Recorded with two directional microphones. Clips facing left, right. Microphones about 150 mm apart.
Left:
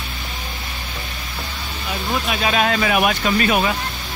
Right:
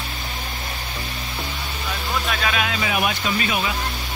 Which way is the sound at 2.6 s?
60° left (ahead or behind).